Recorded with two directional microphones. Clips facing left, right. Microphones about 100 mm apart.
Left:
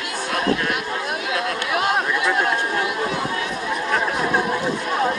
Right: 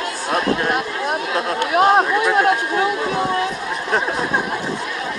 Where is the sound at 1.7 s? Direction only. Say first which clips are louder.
Right 8 dB; 35° right (ahead or behind).